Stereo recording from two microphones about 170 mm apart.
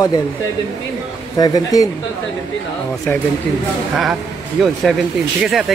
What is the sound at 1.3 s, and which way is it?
Speech, 20° left (ahead or behind).